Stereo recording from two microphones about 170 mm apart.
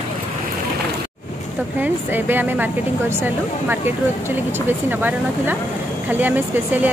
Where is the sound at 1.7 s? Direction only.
10° right (ahead or behind).